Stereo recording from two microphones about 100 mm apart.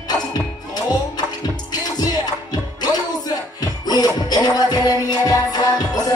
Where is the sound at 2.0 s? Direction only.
40° left (ahead or behind).